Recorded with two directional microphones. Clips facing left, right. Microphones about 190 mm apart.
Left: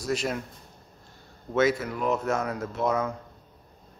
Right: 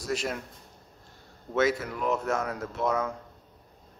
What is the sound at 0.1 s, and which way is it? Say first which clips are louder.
Speech: left 2 dB; 20° left (ahead or behind).